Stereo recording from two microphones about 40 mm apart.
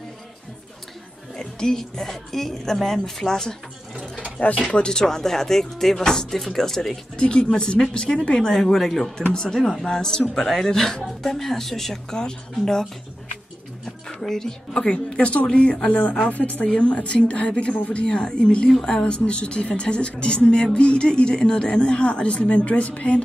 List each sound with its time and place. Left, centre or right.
1.3 s a woman's voice: centre
4.4 s a woman's voice: left
4.7 s a woman's voice: centre
7.2 s a woman's voice: left
13.8 s a woman's voice: centre
16.3 s a woman's voice: left
16.6 s speech: left